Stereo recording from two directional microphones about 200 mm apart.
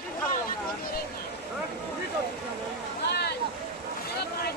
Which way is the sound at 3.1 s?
55° left (ahead or behind).